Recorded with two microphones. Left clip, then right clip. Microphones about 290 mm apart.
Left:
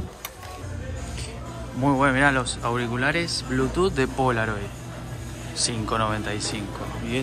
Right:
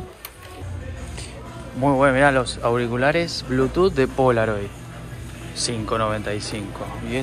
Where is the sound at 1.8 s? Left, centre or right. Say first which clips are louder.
Right 4 dB; centre.